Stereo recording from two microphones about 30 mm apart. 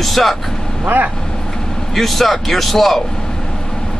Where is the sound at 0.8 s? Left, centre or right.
Right.